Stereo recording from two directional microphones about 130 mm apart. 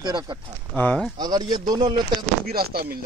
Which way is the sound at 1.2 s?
30° right (ahead or behind).